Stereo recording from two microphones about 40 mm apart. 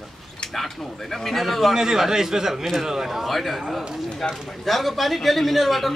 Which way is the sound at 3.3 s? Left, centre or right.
Centre.